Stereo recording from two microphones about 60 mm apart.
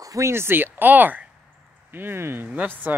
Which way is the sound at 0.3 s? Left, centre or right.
Right.